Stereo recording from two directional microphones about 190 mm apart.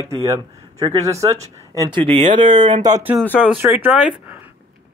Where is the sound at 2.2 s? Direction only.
40° right (ahead or behind).